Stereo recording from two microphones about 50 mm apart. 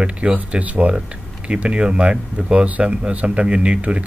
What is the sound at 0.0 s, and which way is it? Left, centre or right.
Speech, right.